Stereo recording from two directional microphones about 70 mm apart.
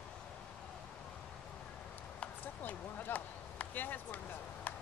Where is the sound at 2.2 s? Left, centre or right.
Left.